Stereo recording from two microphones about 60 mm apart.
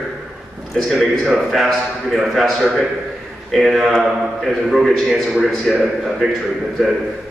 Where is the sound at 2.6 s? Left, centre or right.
Centre.